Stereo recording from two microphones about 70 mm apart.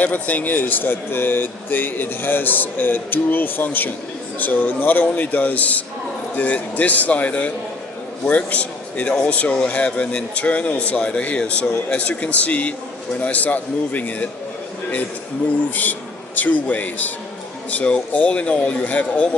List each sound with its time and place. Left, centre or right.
0.0 s a man's voice: left
15.7 s speech: left